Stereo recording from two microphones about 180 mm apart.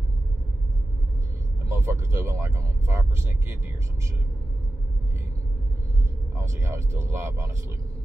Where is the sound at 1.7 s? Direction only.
15° right (ahead or behind).